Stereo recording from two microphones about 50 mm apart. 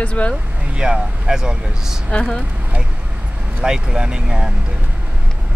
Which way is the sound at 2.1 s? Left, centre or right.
Centre.